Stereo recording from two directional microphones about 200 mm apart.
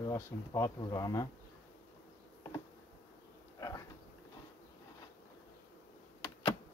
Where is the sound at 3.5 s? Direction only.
15° left (ahead or behind).